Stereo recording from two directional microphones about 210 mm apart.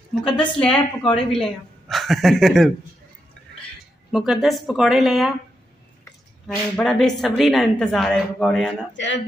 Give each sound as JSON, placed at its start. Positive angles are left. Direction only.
{"t": 0.1, "sound": "speech", "side_deg": 5}
{"t": 4.1, "sound": "speech", "side_deg": 0}
{"t": 6.4, "sound": "speech", "side_deg": 0}
{"t": 8.9, "sound": "speech", "side_deg": 60}